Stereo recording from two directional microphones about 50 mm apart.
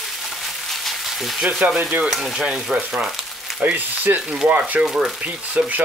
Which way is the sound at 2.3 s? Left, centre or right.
Centre.